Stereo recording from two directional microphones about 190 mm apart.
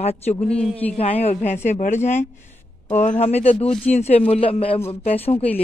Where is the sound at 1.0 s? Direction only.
35° left (ahead or behind).